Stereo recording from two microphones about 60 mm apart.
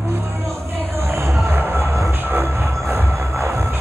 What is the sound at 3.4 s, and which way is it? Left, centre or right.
Train, right.